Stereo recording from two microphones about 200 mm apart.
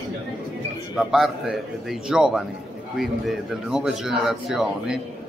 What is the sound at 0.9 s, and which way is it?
A man's voice, centre (ahead or behind).